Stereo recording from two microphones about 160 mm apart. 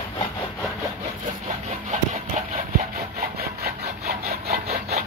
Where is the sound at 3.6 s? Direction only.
75° right (ahead or behind).